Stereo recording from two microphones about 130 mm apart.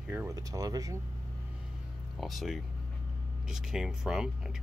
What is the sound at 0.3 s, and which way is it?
Speech, 25° right (ahead or behind).